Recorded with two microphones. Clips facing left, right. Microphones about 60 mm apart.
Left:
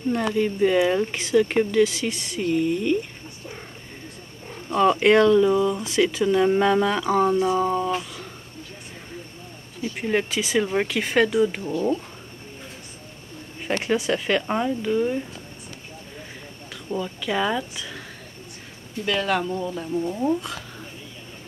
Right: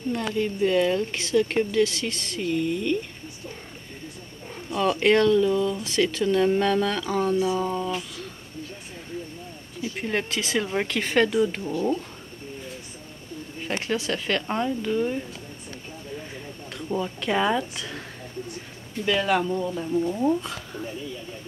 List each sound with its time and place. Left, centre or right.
0.1 s speech: centre
4.7 s speech: centre
9.8 s speech: centre
13.8 s speech: centre
16.7 s speech: centre
19.0 s speech: centre